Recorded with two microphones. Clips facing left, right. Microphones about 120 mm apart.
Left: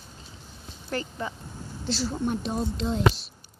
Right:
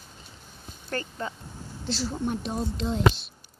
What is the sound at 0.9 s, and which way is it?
Speech, 20° left (ahead or behind).